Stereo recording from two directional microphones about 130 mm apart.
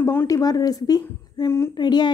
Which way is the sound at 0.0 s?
15° left (ahead or behind).